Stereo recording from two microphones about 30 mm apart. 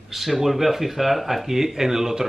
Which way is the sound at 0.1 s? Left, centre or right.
Centre.